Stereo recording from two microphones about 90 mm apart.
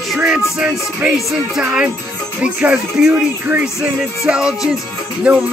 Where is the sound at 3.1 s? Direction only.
20° right (ahead or behind).